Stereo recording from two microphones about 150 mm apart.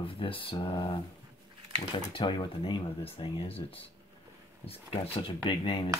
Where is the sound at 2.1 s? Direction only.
35° left (ahead or behind).